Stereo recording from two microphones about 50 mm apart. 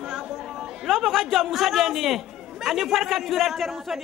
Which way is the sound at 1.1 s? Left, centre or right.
Centre.